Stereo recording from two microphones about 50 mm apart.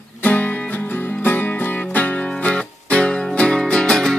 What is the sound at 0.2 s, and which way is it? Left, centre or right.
Music, left.